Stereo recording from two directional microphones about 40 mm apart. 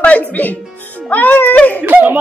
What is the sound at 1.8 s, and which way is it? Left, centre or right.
Speech, right.